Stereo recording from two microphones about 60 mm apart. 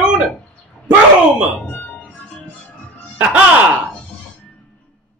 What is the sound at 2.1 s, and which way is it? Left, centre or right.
Music, centre.